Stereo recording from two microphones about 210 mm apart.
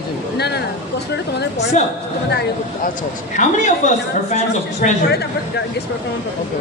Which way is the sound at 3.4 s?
35° left (ahead or behind).